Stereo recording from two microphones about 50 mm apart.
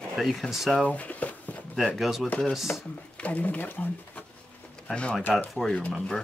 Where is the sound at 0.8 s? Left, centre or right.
Left.